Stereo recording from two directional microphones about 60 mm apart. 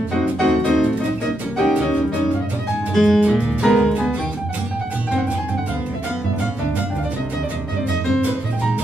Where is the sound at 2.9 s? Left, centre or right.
Centre.